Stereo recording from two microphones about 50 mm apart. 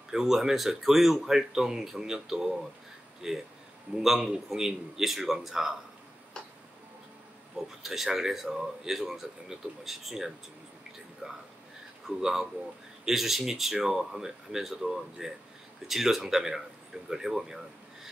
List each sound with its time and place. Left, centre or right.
0.1 s speech: centre
6.4 s tick-tock: centre
7.5 s speech: centre